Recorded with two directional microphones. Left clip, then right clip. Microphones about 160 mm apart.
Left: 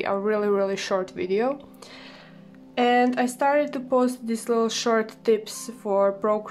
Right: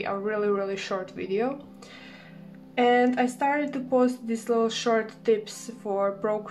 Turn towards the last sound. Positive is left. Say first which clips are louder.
# left 4 dB
turn(degrees=35)  # may be behind; listen again after turning